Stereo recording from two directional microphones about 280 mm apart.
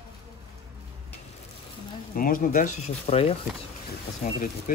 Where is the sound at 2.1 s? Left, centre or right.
Left.